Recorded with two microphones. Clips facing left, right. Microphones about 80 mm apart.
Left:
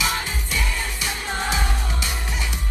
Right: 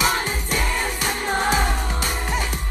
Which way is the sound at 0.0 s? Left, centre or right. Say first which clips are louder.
Right 4 dB; right.